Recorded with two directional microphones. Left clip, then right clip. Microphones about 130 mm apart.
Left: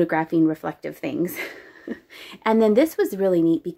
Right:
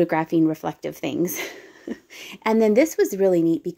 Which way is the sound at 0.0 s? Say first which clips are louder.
Even; 20° right (ahead or behind).